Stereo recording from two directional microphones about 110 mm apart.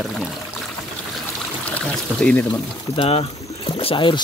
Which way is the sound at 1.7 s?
10° left (ahead or behind).